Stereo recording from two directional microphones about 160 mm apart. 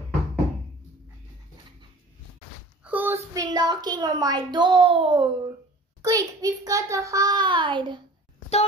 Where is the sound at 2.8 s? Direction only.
10° right (ahead or behind); by 8.0 s 30° right (ahead or behind).